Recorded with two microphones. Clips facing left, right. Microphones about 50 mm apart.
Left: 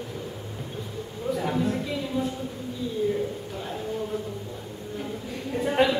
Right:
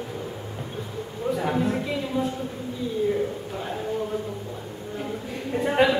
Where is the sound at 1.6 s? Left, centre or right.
Centre.